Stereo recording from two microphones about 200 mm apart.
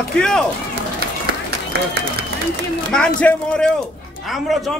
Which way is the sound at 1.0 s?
50° right (ahead or behind).